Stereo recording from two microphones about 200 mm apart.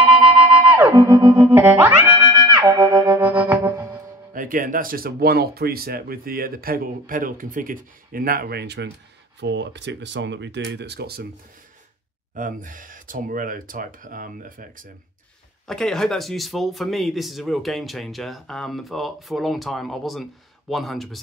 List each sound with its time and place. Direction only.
0.0 s music: 25° right (ahead or behind)
1.7 s music: 10° right (ahead or behind)
2.1 s music: 20° right (ahead or behind)
3.2 s music: 10° right (ahead or behind)
4.3 s speech: 45° right (ahead or behind)
12.4 s speech: 40° right (ahead or behind)
15.6 s speech: 5° left (ahead or behind)